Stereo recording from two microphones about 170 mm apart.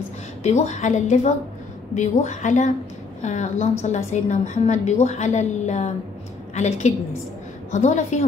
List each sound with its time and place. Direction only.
0.4 s a woman's voice: 40° left (ahead or behind)